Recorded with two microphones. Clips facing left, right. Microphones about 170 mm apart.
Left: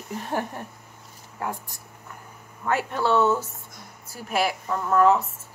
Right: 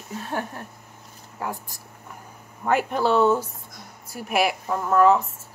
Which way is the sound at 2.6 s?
15° right (ahead or behind).